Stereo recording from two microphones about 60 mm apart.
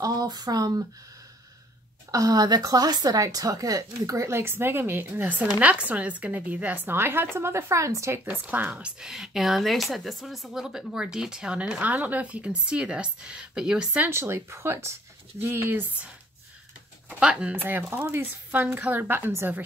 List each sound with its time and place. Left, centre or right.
0.0 s speech: right
2.0 s a woman's voice: right
4.3 s a woman's voice: right
8.1 s speech: right
8.9 s a woman's voice: centre
14.1 s a woman's voice: right
17.2 s a woman's voice: centre
17.6 s a woman's voice: right